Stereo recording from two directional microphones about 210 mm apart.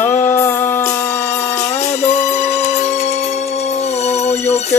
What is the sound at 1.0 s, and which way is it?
Music, 35° left (ahead or behind).